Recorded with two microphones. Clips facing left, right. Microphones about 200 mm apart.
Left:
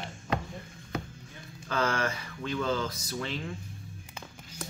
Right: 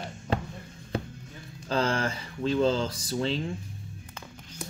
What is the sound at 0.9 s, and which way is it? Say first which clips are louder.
Music: right 3 dB; 30° right (ahead or behind).